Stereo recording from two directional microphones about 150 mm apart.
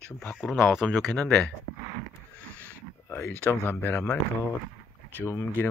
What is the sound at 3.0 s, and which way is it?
Speech, 15° left (ahead or behind).